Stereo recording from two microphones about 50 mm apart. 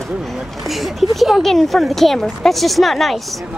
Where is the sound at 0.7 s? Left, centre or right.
Centre.